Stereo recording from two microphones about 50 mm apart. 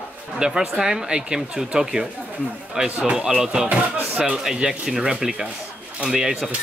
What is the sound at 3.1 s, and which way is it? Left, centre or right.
Speech, right.